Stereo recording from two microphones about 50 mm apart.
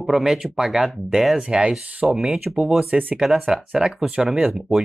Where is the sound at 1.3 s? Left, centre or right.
Centre.